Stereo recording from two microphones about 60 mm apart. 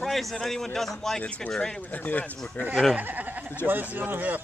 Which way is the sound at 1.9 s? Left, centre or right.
Left.